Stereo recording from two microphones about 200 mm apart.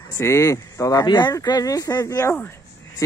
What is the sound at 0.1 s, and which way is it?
Speech, 15° left (ahead or behind).